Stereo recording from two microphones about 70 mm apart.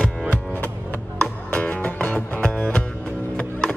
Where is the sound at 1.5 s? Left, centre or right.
Left.